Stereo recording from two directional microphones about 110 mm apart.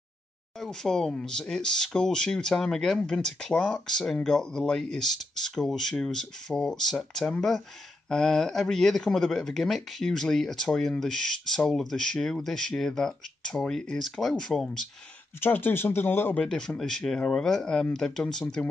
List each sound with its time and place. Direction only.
0.6 s speech: 5° left (ahead or behind)
15.4 s speech: 20° left (ahead or behind)
16.4 s speech: 5° left (ahead or behind)